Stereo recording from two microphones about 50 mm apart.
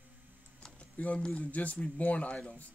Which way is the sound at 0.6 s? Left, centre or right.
Left.